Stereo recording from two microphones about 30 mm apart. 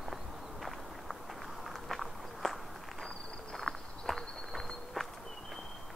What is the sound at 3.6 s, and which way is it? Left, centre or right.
Walk, centre.